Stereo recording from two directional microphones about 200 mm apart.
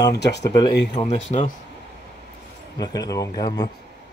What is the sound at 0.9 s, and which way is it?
Speech, 35° left (ahead or behind).